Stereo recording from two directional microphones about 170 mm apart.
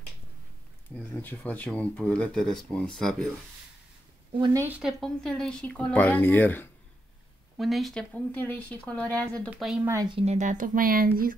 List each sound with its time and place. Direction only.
0.9 s speech: 10° left (ahead or behind)
4.6 s speech: 5° right (ahead or behind); by 6.7 s 10° left (ahead or behind)
7.5 s speech: centre (ahead or behind)
9.8 s speech: 20° right (ahead or behind)
10.1 s speech: 40° right (ahead or behind); by 11.3 s 60° right (ahead or behind)